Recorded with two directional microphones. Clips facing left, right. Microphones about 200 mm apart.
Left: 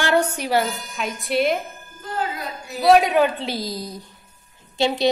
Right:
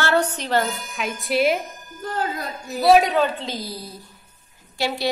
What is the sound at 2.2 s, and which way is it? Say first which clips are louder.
Speech: even; 45° right (ahead or behind).